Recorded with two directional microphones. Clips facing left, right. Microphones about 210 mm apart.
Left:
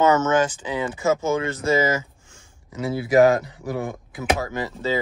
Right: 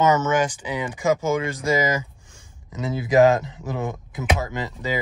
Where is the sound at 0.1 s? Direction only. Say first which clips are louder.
Left 1 dB; 15° right (ahead or behind).